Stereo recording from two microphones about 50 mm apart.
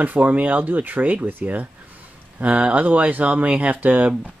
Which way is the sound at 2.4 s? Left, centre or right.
Right.